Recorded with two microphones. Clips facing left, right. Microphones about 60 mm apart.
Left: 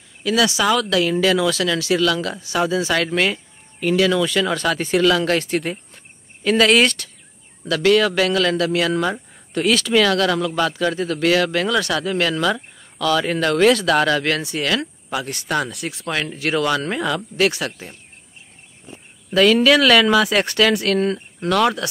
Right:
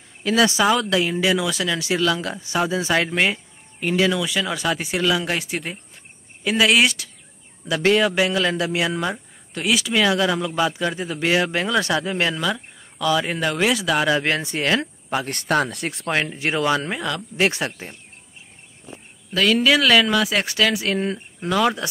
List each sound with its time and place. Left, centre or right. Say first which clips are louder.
0.2 s speech: even; right
0.7 s speech: left 1 dB; centre
1.2 s speech: left 3 dB; centre
4.1 s speech: left 4 dB; centre
7.6 s speech: left 2 dB; right
12.4 s speech: left 4 dB; centre
13.0 s speech: left 2 dB; centre
14.1 s speech: left 1 dB; right
15.2 s speech: right 3 dB; right
16.1 s speech: even; right
16.9 s speech: left 4 dB; centre
17.4 s speech: even; right
19.3 s speech: left 4 dB; centre